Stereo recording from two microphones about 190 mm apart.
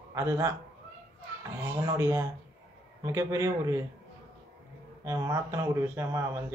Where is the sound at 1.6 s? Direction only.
10° right (ahead or behind).